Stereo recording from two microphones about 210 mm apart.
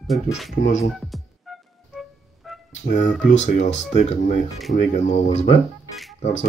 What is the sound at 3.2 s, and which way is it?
Speech, 35° left (ahead or behind).